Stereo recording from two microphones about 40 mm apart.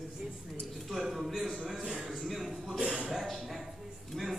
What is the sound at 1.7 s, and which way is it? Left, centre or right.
Speech, right.